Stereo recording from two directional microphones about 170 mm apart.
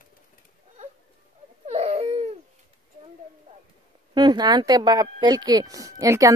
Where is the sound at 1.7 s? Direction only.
40° right (ahead or behind).